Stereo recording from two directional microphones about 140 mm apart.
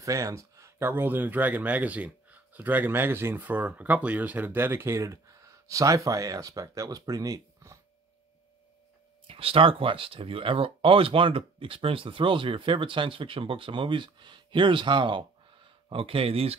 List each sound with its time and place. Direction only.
0.0 s speech: 25° right (ahead or behind)
9.3 s speech: 40° right (ahead or behind)